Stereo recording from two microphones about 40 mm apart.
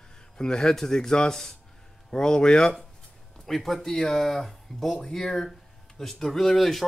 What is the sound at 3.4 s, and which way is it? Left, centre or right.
Speech, centre.